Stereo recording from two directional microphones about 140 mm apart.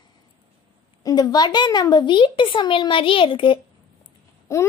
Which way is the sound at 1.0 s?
30° left (ahead or behind).